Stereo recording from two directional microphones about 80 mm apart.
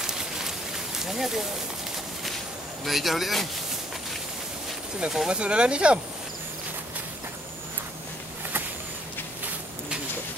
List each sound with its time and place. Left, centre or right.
0.0 s a sound: centre
2.8 s speech: centre
5.0 s speech: centre